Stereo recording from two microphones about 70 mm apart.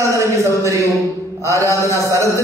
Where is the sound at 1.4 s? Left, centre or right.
Right.